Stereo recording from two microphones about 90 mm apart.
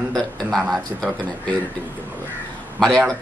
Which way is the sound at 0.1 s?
5° left (ahead or behind).